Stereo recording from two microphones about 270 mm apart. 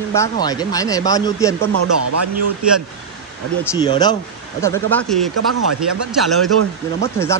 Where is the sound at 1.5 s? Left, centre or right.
Right.